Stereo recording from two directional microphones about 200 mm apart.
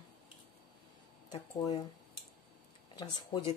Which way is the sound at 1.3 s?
20° left (ahead or behind).